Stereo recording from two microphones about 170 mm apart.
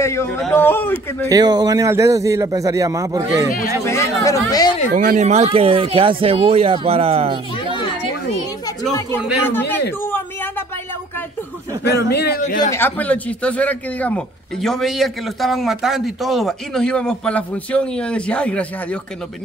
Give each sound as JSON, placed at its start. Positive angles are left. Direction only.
{"t": 0.0, "sound": "a man's voice", "side_deg": 15}
{"t": 1.3, "sound": "a man's voice", "side_deg": -25}
{"t": 3.8, "sound": "speech", "side_deg": 15}
{"t": 4.9, "sound": "speech", "side_deg": -50}
{"t": 9.5, "sound": "speech", "side_deg": 10}
{"t": 12.1, "sound": "a man's voice", "side_deg": 70}
{"t": 12.7, "sound": "a man's voice", "side_deg": 10}